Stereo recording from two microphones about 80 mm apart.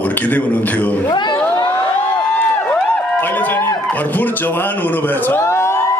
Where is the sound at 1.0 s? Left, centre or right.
Left.